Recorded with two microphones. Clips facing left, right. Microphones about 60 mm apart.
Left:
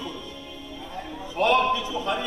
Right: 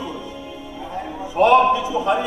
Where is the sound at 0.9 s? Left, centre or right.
Centre.